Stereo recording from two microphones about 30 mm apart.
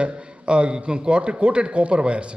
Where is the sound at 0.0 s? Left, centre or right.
Right.